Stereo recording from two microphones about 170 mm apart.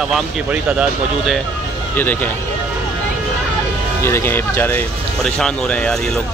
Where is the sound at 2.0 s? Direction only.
10° left (ahead or behind).